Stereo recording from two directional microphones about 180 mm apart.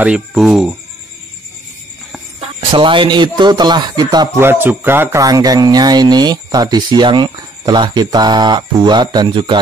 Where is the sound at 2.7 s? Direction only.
30° right (ahead or behind).